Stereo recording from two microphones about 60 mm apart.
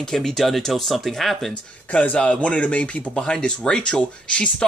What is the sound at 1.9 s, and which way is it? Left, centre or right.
Speech, left.